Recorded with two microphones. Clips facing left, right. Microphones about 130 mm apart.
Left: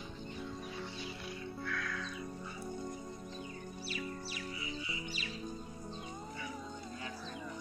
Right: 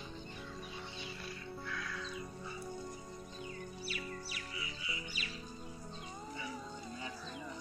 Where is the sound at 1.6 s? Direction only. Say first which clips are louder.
Left 4 dB; 15° right (ahead or behind).